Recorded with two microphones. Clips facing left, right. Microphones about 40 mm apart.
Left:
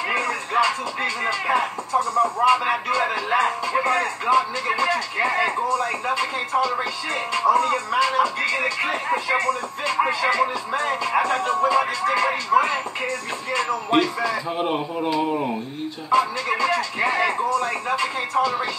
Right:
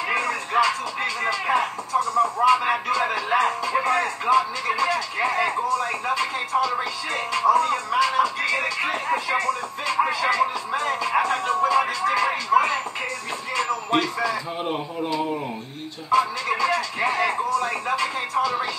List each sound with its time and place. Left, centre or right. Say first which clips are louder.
0.1 s speech: right 1 dB; centre
14.6 s speech: left 3 dB; centre
16.1 s speech: left 1 dB; centre